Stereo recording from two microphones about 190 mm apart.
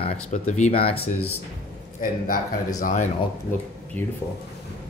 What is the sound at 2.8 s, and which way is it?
Speech, 40° left (ahead or behind).